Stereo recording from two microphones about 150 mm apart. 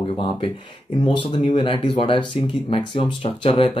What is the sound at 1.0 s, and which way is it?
Speech, 35° left (ahead or behind).